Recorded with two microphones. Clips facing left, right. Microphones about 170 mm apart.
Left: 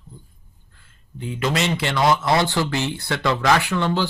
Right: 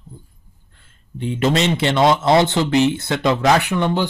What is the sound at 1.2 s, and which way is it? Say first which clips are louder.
Speech: right 5 dB; 25° right (ahead or behind).